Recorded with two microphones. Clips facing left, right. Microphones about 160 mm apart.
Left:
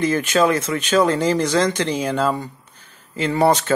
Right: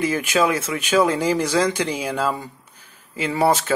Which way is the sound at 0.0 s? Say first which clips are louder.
Left 2 dB; 10° right (ahead or behind).